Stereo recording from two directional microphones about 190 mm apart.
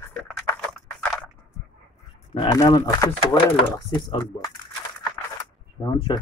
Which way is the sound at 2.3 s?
20° left (ahead or behind).